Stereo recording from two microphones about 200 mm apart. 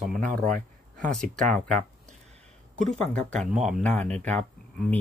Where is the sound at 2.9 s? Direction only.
5° left (ahead or behind).